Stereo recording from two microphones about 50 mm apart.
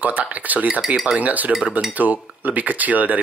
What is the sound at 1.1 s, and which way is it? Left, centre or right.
Speech, right.